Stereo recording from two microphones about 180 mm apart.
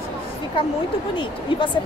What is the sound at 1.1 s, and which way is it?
Speech, 25° left (ahead or behind).